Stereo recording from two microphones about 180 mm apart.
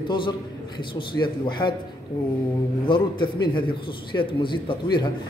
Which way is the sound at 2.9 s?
25° left (ahead or behind).